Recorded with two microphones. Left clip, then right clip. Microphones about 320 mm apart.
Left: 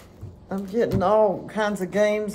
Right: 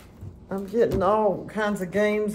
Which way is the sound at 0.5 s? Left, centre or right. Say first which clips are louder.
Right 1 dB; centre.